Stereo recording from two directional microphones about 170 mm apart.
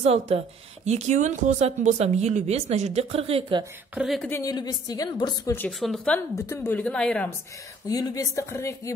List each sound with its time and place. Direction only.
0.0 s speech: 35° right (ahead or behind)
3.9 s speech: 5° right (ahead or behind)
4.2 s speech: 15° left (ahead or behind)
5.6 s a woman's voice: centre (ahead or behind)
7.8 s speech: 20° left (ahead or behind)